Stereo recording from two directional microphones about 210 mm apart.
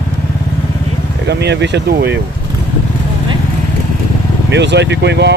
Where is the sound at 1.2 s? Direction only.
55° right (ahead or behind).